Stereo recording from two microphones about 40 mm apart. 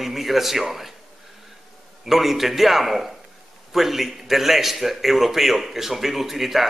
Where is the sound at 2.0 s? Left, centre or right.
Centre.